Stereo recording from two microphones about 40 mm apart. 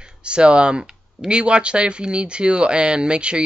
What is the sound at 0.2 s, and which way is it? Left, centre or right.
Speech, right.